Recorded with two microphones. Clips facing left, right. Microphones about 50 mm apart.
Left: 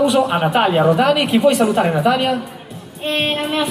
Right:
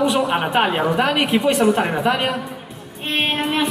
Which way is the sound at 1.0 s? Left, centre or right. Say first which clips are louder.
Left 4 dB; right.